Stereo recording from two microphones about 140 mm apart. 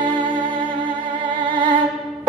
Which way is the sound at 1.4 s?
35° right (ahead or behind).